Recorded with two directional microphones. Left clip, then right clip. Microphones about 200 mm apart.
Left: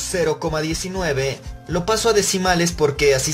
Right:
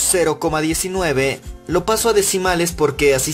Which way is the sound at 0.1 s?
25° right (ahead or behind).